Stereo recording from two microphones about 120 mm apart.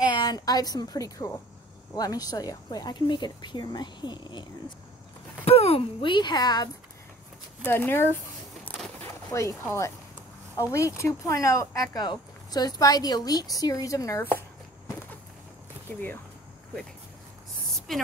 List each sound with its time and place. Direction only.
0.0 s a woman's voice: 35° left (ahead or behind)
5.4 s speech: 55° left (ahead or behind); by 6.7 s 35° left (ahead or behind)
7.6 s speech: 15° left (ahead or behind)
9.6 s speech: 20° left (ahead or behind)
17.9 s a woman's voice: centre (ahead or behind)